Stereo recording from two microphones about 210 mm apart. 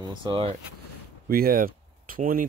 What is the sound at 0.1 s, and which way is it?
Speech, 25° right (ahead or behind).